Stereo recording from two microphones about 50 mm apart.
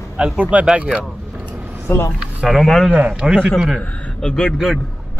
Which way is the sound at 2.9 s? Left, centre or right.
Right.